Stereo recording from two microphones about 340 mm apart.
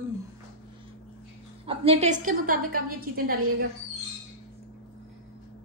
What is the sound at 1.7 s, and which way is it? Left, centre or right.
A woman's voice, centre.